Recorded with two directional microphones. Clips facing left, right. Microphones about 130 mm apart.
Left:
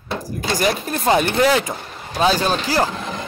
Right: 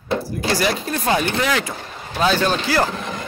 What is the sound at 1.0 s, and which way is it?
A man's voice, 25° left (ahead or behind).